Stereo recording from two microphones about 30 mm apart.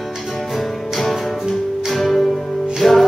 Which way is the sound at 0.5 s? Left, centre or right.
Centre.